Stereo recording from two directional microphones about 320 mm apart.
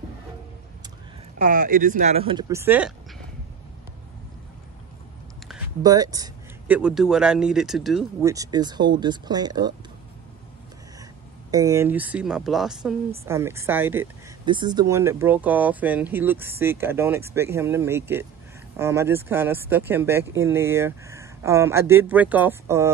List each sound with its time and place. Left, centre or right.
1.4 s speech: right; by 2.9 s centre
5.8 s speech: centre
11.5 s speech: centre